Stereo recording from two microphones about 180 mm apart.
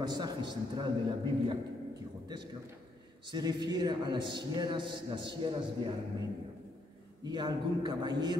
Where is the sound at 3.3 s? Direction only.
25° right (ahead or behind).